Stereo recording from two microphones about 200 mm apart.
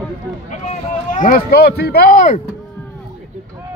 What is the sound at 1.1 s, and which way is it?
Speech, 45° left (ahead or behind).